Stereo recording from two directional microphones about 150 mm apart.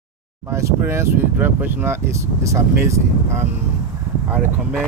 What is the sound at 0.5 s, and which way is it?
Speech, 20° right (ahead or behind).